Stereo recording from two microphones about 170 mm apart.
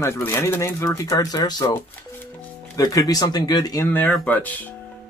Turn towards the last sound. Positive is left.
turn(degrees=10)  # may be behind; listen again after turning